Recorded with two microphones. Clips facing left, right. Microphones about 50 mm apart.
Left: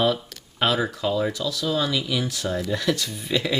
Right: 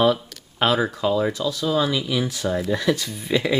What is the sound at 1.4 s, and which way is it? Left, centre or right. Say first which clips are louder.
Speech: right 3 dB; right.